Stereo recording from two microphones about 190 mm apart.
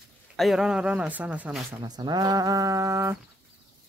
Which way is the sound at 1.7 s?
20° right (ahead or behind).